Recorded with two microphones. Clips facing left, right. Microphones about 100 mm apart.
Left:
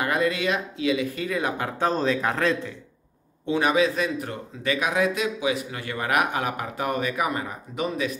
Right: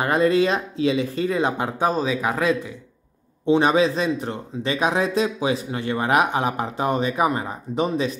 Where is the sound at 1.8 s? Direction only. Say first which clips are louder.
Even; 10° right (ahead or behind).